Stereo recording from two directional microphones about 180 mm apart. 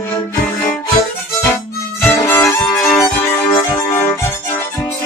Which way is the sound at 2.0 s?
10° left (ahead or behind).